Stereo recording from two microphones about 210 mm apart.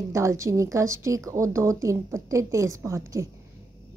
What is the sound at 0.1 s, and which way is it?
A woman's voice, 15° right (ahead or behind).